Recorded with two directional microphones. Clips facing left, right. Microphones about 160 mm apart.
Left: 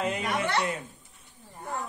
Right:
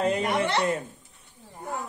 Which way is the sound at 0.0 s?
35° right (ahead or behind).